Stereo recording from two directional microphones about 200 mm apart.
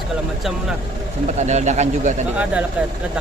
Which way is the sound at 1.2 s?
35° right (ahead or behind).